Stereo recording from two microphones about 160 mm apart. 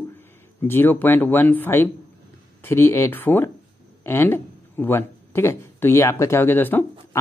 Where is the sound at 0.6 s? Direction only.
15° left (ahead or behind).